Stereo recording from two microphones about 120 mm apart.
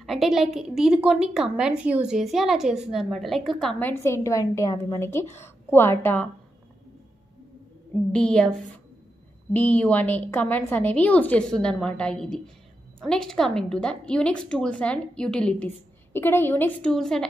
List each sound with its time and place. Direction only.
0.0 s a woman's voice: centre (ahead or behind)
3.8 s a woman's voice: 20° left (ahead or behind)
8.1 s a woman's voice: 5° left (ahead or behind)
16.1 s a woman's voice: 20° left (ahead or behind)
16.9 s a woman's voice: 5° left (ahead or behind)